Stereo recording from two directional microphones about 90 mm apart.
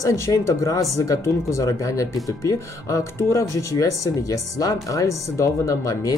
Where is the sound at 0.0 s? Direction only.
35° left (ahead or behind).